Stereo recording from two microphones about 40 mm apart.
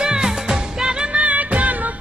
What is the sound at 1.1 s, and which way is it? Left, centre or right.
Music, right.